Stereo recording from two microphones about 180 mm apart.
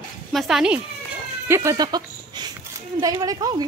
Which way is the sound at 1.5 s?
15° right (ahead or behind).